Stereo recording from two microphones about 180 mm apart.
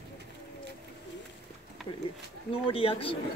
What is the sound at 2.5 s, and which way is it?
Speech, 30° left (ahead or behind).